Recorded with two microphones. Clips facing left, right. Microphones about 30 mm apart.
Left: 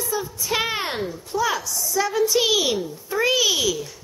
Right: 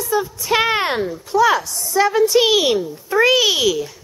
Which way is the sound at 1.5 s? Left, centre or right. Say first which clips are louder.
Right 6 dB; right.